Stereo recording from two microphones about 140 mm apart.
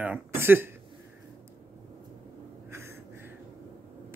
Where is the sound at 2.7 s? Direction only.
20° right (ahead or behind).